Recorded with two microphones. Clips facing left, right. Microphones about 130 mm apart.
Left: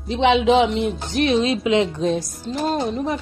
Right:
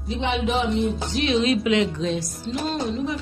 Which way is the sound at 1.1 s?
50° left (ahead or behind).